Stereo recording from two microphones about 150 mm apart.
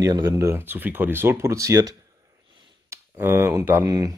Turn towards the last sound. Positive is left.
turn(degrees=-25)  # may be behind; listen again after turning